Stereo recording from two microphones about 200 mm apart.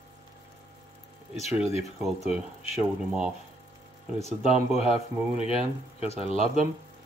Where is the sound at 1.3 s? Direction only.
30° left (ahead or behind).